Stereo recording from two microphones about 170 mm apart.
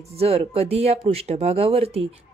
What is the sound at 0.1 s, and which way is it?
Speech, 35° right (ahead or behind).